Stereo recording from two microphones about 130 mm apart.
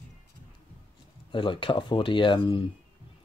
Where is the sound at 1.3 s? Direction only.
40° left (ahead or behind).